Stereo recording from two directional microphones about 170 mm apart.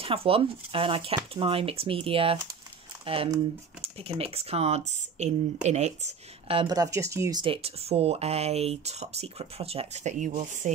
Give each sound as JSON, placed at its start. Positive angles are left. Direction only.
{"t": 0.0, "sound": "speech", "side_deg": -35}